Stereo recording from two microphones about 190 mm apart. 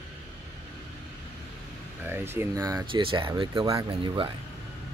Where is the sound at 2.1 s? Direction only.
10° right (ahead or behind); by 4.3 s 25° right (ahead or behind).